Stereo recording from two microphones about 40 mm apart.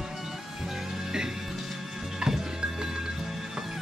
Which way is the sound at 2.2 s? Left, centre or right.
Centre.